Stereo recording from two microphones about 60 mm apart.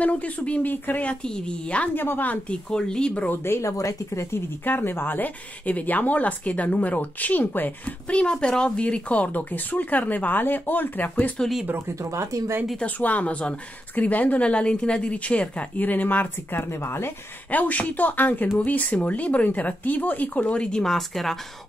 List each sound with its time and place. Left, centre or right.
0.0 s speech: left
1.2 s a woman's voice: centre
2.0 s speech: left
2.7 s a woman's voice: centre
3.3 s speech: left
3.7 s speech: left
4.6 s speech: left
8.1 s speech: centre
12.0 s speech: right
12.7 s speech: left
16.8 s speech: left
17.5 s speech: left; by 21.4 s centre